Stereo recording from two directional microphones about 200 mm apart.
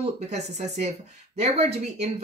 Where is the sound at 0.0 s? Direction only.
35° right (ahead or behind).